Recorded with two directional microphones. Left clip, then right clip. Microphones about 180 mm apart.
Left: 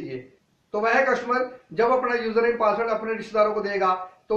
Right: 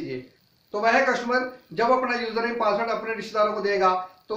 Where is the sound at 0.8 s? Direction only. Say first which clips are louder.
Even; 15° right (ahead or behind).